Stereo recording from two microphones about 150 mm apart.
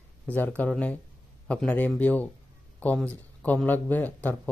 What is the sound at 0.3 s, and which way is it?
Speech, 10° left (ahead or behind).